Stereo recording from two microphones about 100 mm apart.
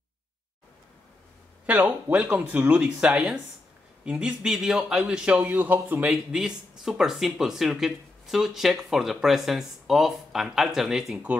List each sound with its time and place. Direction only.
1.7 s a man's voice: 15° right (ahead or behind)
6.0 s speech: 5° right (ahead or behind)